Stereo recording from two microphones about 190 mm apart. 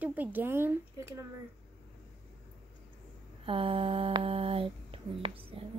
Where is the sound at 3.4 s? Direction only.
30° right (ahead or behind).